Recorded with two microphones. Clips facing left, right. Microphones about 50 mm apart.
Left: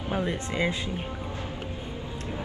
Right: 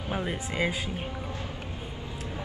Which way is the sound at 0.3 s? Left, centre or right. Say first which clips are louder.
Left 1 dB; centre.